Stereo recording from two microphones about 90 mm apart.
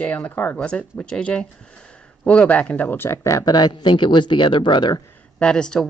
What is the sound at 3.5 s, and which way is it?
Speech, 55° left (ahead or behind).